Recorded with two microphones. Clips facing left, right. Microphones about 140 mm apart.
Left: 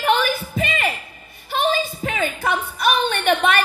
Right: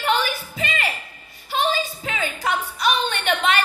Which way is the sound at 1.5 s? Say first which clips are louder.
Left 2 dB; 55° left (ahead or behind).